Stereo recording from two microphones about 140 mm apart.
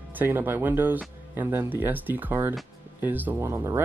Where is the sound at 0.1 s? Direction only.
15° right (ahead or behind).